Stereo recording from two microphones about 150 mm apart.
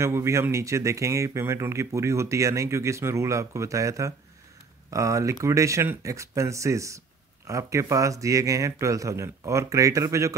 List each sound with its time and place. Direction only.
0.0 s speech: 20° right (ahead or behind)